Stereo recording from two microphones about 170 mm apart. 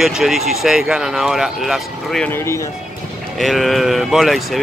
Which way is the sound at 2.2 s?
15° left (ahead or behind).